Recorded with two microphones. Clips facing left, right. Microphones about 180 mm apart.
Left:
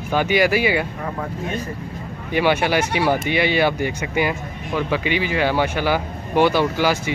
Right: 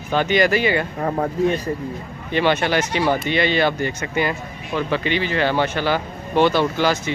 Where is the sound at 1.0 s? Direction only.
40° right (ahead or behind).